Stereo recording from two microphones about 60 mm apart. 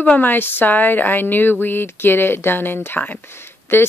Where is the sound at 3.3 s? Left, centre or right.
Left.